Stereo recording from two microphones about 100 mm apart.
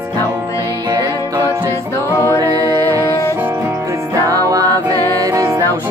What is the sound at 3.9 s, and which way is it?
Music, 30° right (ahead or behind).